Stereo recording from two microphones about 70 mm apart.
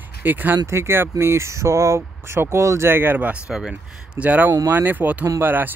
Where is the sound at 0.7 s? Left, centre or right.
Right.